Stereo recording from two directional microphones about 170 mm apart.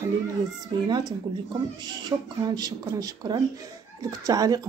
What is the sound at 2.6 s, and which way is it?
Speech, 20° right (ahead or behind).